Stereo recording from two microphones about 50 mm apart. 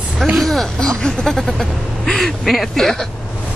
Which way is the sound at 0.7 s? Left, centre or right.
Centre.